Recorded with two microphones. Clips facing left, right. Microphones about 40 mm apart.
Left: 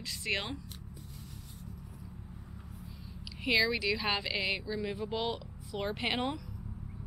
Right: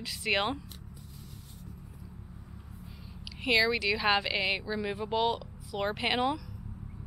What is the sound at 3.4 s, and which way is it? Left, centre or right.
Speech, centre.